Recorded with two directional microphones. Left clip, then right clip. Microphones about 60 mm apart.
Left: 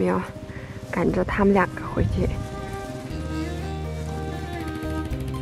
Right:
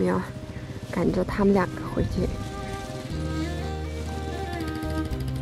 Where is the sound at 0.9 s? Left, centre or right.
Left.